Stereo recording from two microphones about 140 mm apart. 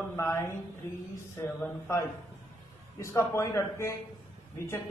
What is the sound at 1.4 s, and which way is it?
A man's voice, 20° left (ahead or behind).